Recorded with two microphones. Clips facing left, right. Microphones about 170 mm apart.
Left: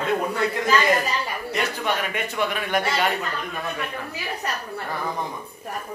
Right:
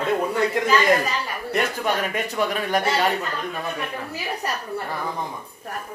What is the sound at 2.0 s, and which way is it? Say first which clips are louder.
A man's voice: right 2 dB; 40° right (ahead or behind).